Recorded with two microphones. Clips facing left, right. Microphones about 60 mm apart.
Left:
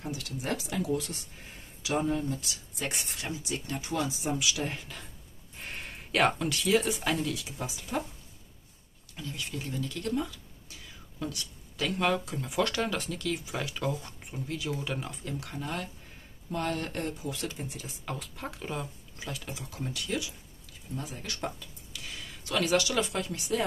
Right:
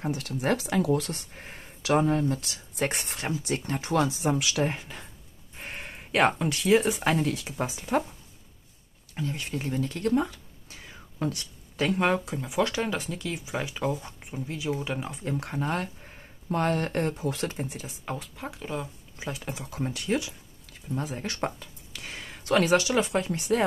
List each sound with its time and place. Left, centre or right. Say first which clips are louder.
0.0 s speech: right 7 dB; right
3.8 s speech: right 8 dB; right
4.6 s speech: right 5 dB; right
9.1 s speech: right 6 dB; right
12.4 s speech: right 2 dB; centre
15.2 s speech: right 10 dB; right
18.2 s speech: right 1 dB; centre
19.1 s speech: right 5 dB; right
20.6 s speech: right 6 dB; right